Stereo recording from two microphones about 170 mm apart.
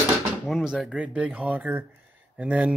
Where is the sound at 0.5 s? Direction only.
Centre (ahead or behind).